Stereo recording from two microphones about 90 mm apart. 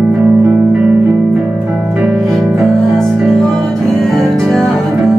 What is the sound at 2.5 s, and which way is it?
Music, centre (ahead or behind).